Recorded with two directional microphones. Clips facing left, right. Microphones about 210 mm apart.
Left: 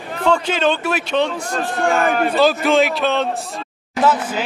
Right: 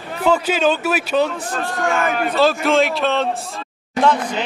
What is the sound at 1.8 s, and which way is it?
Speech, 35° left (ahead or behind).